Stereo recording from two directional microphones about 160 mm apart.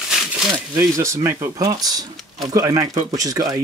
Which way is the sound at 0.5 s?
20° right (ahead or behind).